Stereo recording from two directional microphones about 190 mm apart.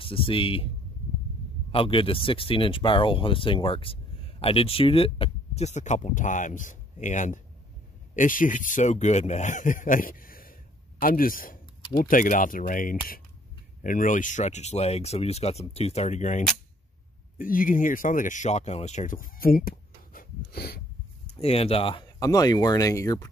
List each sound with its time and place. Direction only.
0.0 s speech: 30° left (ahead or behind)
1.7 s speech: 30° left (ahead or behind); by 20.8 s 55° left (ahead or behind)
21.4 s speech: 30° left (ahead or behind)